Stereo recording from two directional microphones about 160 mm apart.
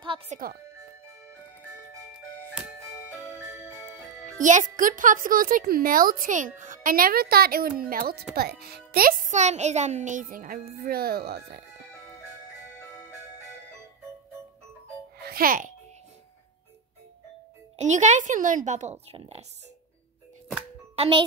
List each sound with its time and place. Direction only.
0.3 s a child's voice: 45° right (ahead or behind)
4.4 s speech: 50° right (ahead or behind); by 8.3 s 70° right (ahead or behind)
8.4 s speech: 80° right
9.3 s a child's voice: 45° right (ahead or behind); by 11.6 s 85° right
15.1 s music: 70° right (ahead or behind)
17.7 s a child's voice: 45° right (ahead or behind)
20.9 s a child's voice: 35° right (ahead or behind)